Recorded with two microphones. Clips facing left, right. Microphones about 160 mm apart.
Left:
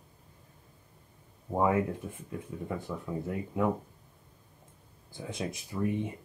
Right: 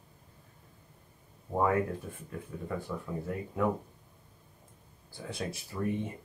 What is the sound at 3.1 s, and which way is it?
Speech, 15° left (ahead or behind).